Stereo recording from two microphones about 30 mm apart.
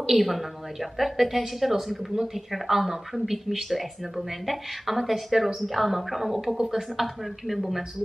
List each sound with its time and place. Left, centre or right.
0.2 s a woman's voice: centre
6.7 s a woman's voice: centre